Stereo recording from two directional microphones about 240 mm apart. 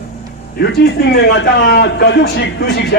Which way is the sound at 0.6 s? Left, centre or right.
Left.